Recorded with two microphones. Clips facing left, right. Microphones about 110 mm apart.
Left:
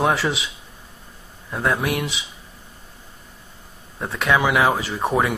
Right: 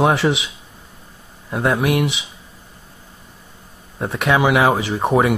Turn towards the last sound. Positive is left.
turn(degrees=-20)  # may be behind; listen again after turning